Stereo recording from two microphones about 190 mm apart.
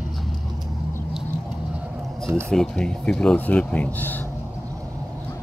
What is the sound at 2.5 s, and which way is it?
Speech, 5° left (ahead or behind).